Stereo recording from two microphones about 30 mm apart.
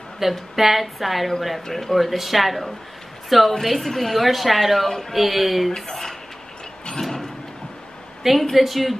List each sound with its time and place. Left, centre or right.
0.2 s a woman's voice: centre
5.8 s speech: centre
6.9 s a sound: centre
8.4 s a woman's voice: centre